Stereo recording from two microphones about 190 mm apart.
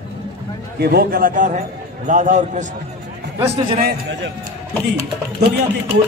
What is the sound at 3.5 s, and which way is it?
Speech, 30° right (ahead or behind).